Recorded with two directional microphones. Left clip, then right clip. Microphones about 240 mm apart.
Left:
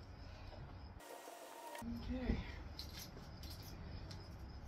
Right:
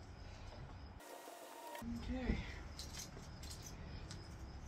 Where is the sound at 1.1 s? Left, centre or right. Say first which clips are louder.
Even; centre.